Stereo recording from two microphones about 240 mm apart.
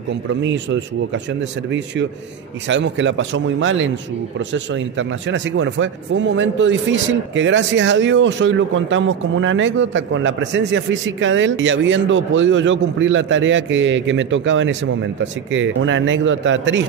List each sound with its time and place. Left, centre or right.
0.3 s speech: right
2.7 s speech: right